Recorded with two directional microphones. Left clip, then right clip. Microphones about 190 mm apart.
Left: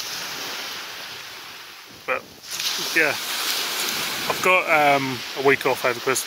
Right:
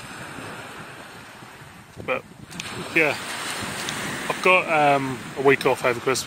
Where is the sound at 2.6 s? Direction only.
40° right (ahead or behind).